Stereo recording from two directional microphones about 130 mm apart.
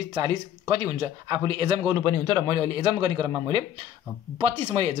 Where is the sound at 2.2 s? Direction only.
30° right (ahead or behind).